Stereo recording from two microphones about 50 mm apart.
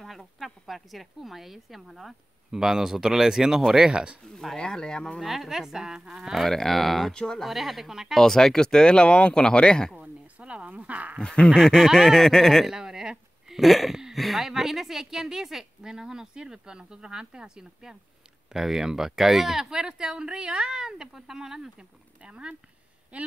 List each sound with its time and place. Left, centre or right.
0.0 s a woman's voice: centre
3.9 s speech: right
4.3 s a woman's voice: centre
4.6 s speech: centre
5.2 s a woman's voice: centre
6.4 s a woman's voice: centre
7.2 s speech: centre
7.4 s a woman's voice: centre
8.2 s speech: centre
9.9 s speech: right
11.1 s speech: centre
12.6 s a sound: centre
13.6 s a woman's voice: centre; by 23.3 s right